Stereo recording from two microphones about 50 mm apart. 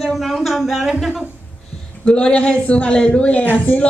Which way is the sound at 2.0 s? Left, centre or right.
Centre.